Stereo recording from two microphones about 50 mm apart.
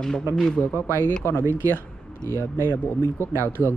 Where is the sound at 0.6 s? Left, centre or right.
Left.